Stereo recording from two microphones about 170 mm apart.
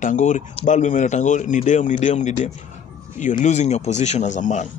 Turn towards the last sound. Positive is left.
turn(degrees=45)  # may be behind; listen again after turning